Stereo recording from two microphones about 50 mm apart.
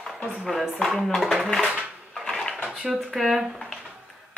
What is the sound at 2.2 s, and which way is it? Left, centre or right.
Dishes, centre.